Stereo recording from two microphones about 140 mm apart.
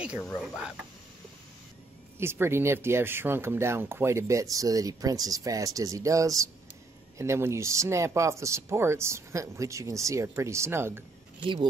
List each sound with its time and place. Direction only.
0.2 s speech: 5° left (ahead or behind)
2.1 s speech: 15° right (ahead or behind)